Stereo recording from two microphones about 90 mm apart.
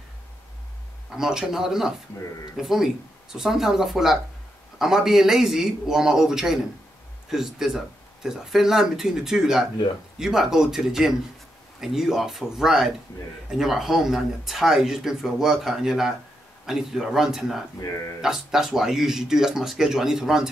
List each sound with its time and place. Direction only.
1.1 s speech: 5° right (ahead or behind)
17.7 s speech: 35° left (ahead or behind)
18.2 s speech: 5° right (ahead or behind)